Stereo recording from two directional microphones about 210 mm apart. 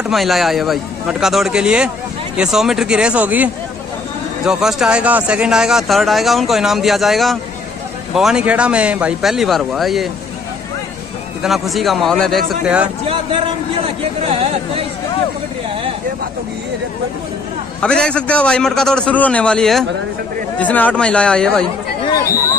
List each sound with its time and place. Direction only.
0.1 s speech: centre (ahead or behind)
4.5 s speech: centre (ahead or behind)
11.4 s speech: centre (ahead or behind)
13.0 s a man's voice: 25° right (ahead or behind)
17.7 s speech: 5° left (ahead or behind)